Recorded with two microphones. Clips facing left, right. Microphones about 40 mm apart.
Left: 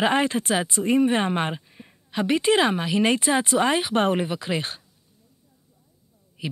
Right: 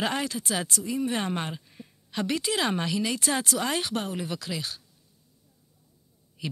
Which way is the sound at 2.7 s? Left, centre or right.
Centre.